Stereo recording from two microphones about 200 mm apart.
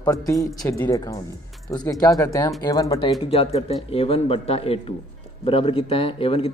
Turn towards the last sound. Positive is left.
turn(degrees=30)  # may be behind; listen again after turning